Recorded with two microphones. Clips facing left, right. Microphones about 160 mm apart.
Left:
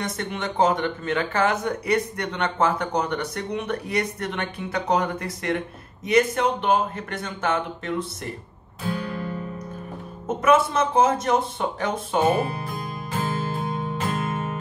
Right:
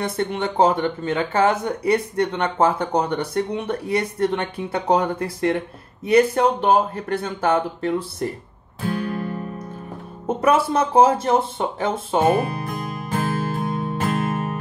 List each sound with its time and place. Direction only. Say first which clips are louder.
0.0 s speech: right 5 dB; 30° right (ahead or behind)
9.0 s guitar: right 4 dB; 45° right (ahead or behind)
10.2 s speech: right 1 dB; 35° right (ahead or behind)
13.1 s music: right 3 dB; 50° right (ahead or behind)